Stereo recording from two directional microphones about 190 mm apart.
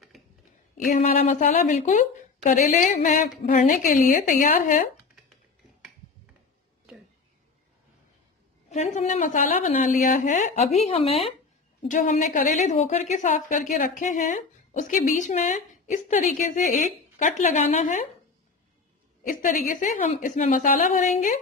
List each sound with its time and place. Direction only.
0.8 s a woman's voice: 40° left (ahead or behind)
8.6 s a woman's voice: 35° left (ahead or behind)
11.8 s a woman's voice: 40° left (ahead or behind)
19.2 s a woman's voice: 45° left (ahead or behind)